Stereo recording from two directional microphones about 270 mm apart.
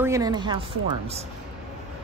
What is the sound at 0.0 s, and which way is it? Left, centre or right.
Speech, centre.